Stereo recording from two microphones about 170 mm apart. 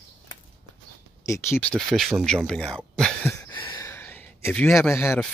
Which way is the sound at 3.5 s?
30° left (ahead or behind).